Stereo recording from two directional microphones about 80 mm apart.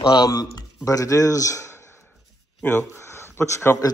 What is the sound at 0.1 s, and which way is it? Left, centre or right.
Speech, left.